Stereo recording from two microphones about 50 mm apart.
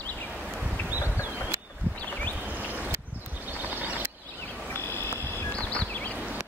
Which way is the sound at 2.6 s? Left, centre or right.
Right.